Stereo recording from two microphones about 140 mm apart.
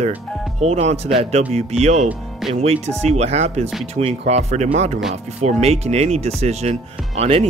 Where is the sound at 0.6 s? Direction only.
50° right (ahead or behind).